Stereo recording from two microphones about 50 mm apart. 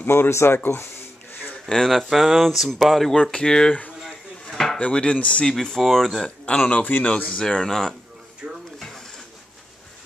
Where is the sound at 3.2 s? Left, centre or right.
Centre.